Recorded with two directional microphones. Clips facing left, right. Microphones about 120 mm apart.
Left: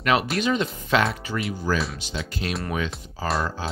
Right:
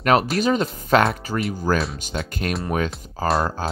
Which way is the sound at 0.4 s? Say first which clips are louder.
Right 3 dB; 40° right (ahead or behind).